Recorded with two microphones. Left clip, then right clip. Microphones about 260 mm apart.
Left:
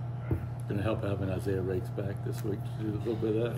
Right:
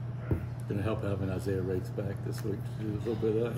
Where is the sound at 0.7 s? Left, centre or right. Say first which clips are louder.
Left 1 dB; centre.